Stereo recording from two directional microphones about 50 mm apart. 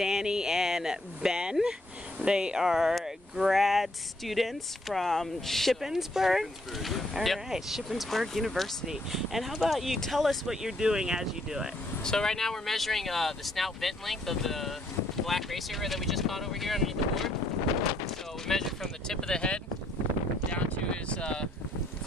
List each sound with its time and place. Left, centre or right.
0.0 s speech: centre
5.8 s speech: centre
12.0 s speech: centre
18.5 s speech: centre
20.5 s a sound: left